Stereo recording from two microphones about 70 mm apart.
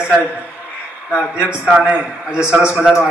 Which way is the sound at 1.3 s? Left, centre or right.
Centre.